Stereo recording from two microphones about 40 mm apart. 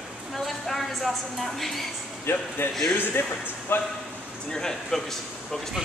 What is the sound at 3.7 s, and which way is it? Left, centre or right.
Speech, left.